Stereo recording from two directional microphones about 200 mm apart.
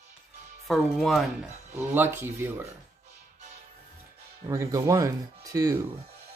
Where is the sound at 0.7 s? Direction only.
Centre (ahead or behind).